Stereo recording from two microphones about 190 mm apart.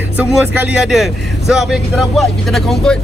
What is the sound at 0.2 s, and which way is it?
Speech, 5° right (ahead or behind).